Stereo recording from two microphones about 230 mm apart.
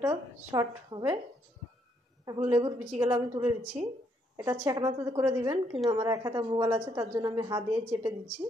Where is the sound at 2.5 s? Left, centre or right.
Centre.